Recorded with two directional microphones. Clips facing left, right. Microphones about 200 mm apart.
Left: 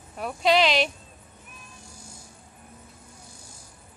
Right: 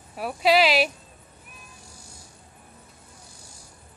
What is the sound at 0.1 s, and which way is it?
Speech, 5° right (ahead or behind).